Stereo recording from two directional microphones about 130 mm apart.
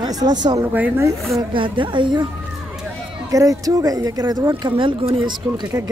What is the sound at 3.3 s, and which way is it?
Speech, 25° right (ahead or behind).